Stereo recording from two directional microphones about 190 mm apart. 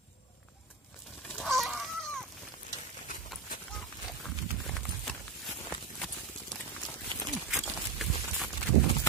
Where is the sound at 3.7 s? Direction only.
Centre (ahead or behind).